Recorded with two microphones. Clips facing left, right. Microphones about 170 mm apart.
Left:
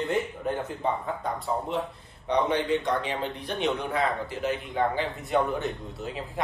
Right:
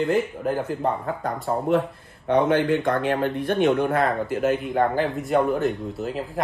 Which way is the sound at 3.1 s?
55° right (ahead or behind).